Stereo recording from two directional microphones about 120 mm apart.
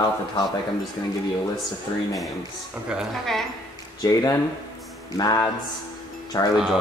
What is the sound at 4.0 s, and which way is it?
Speech, 30° left (ahead or behind).